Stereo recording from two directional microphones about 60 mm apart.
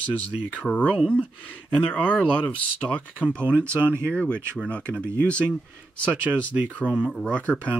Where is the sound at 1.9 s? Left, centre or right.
Centre.